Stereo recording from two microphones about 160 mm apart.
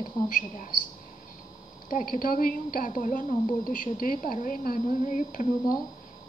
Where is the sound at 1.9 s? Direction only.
60° left (ahead or behind).